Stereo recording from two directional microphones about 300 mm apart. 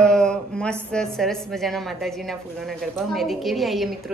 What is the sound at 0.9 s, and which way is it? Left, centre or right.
A woman's voice, centre.